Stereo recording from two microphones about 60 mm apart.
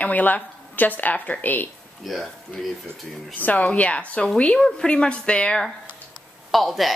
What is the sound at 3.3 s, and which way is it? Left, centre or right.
Speech, left.